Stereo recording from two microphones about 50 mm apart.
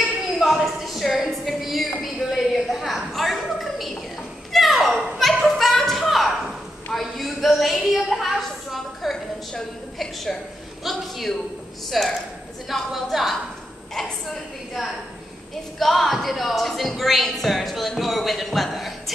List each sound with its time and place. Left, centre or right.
0.4 s a sound: centre
4.5 s children playing: centre
6.9 s a woman's voice: centre
10.8 s speech: centre